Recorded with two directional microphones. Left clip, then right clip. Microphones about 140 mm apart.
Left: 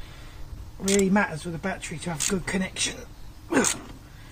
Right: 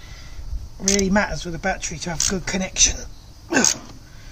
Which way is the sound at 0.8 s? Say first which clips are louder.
Right 3 dB; 45° right (ahead or behind).